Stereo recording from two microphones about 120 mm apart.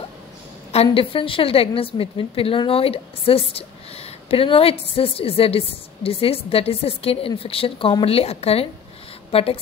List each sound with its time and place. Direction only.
0.7 s a woman's voice: 55° left (ahead or behind)